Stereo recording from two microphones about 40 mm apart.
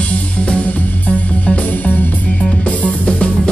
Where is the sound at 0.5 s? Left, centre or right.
Left.